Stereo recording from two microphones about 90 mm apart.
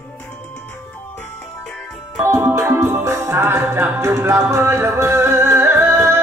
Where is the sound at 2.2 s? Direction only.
30° right (ahead or behind).